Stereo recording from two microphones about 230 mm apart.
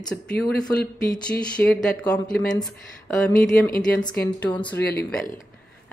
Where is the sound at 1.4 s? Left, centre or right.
Centre.